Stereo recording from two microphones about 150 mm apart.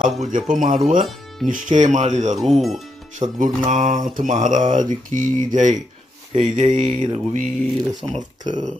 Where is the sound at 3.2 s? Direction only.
55° right (ahead or behind).